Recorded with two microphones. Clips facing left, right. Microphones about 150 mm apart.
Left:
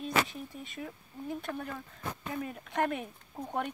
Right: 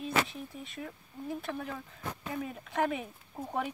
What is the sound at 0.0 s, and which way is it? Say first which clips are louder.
Speech: even; centre (ahead or behind).